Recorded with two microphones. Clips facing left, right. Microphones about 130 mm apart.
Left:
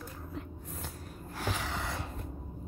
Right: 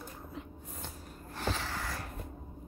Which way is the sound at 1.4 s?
10° left (ahead or behind).